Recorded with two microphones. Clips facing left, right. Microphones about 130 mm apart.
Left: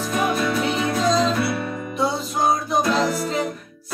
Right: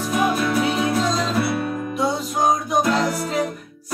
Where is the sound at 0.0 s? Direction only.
10° right (ahead or behind).